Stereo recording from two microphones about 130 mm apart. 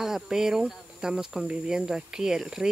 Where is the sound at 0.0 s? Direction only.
5° right (ahead or behind).